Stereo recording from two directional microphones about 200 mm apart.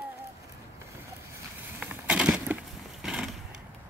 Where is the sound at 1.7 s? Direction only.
5° right (ahead or behind).